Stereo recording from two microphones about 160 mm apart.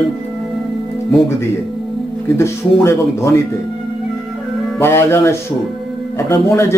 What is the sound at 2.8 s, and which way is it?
Speech, 15° left (ahead or behind).